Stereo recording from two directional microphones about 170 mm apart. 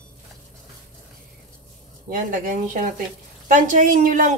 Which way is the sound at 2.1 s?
55° right (ahead or behind).